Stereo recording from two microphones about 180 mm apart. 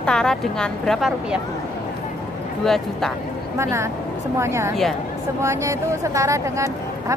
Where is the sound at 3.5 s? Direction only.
15° right (ahead or behind).